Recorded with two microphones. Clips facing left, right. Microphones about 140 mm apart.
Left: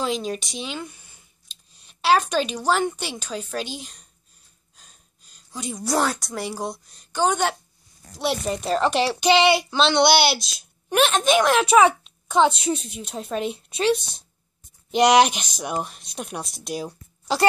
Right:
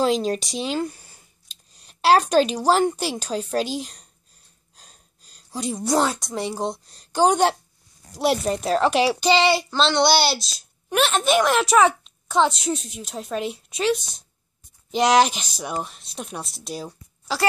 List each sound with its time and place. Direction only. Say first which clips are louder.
0.0 s speech: right 5 dB; 40° right (ahead or behind)
4.7 s a sound: right 3 dB; 35° right (ahead or behind)
5.9 s a woman's voice: right 1 dB; 20° right (ahead or behind); by 7.5 s 35° right (ahead or behind)
8.3 s a woman's voice: right 3 dB; centre (ahead or behind)